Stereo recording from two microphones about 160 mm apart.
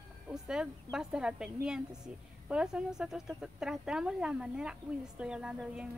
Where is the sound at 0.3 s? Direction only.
5° right (ahead or behind).